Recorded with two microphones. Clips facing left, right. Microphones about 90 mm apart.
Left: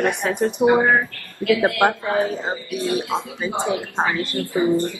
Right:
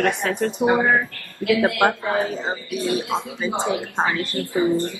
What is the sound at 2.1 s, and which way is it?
Speech, 15° left (ahead or behind).